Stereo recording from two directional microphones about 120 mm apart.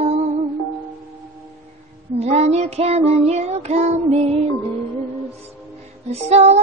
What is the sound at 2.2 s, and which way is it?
Child singing, 60° right (ahead or behind).